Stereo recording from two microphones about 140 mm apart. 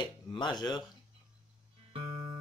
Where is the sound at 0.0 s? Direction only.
35° left (ahead or behind).